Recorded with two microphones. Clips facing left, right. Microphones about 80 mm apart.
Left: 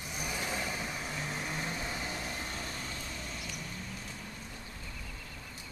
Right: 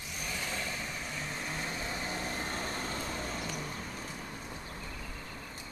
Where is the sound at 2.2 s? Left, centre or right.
Right.